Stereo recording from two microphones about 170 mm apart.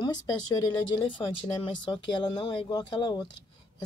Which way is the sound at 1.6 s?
30° left (ahead or behind).